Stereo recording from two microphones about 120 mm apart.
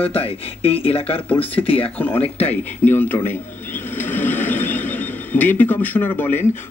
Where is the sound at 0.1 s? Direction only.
55° left (ahead or behind).